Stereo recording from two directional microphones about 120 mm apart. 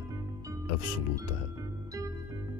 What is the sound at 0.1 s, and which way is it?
Music, 25° right (ahead or behind).